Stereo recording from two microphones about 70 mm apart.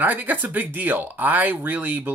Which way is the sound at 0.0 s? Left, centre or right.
Right.